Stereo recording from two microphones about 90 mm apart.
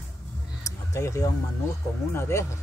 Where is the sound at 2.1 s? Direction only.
30° left (ahead or behind).